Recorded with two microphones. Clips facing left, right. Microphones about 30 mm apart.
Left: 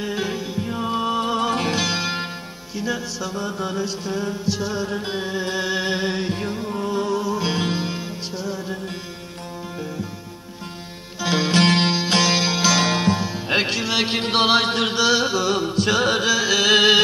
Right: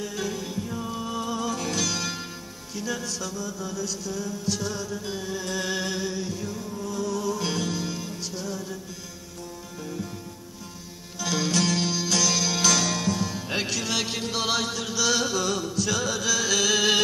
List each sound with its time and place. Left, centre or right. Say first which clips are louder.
0.0 s music: left 5 dB; left
3.3 s chant: left 7 dB; left
4.5 s music: left 4 dB; left
4.8 s chant: left 6 dB; left
6.0 s music: left 7 dB; left
11.1 s music: left 6 dB; left
15.0 s chant: left 3 dB; left